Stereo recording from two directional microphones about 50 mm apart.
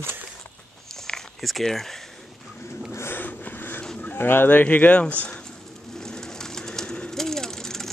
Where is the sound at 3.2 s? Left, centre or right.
Left.